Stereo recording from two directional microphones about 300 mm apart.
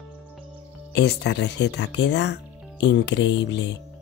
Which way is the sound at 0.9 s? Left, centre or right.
Left.